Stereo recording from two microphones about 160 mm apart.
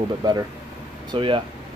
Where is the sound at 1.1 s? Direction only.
30° right (ahead or behind).